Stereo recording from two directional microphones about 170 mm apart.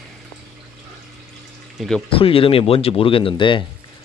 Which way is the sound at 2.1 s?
35° left (ahead or behind).